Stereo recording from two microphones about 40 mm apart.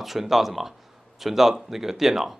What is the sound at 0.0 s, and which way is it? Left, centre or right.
A man's voice, centre.